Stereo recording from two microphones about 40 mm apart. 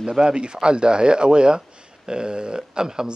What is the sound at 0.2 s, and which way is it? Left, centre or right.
Speech, right.